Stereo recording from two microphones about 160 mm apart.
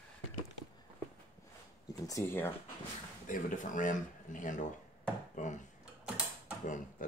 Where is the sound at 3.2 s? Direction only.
55° left (ahead or behind).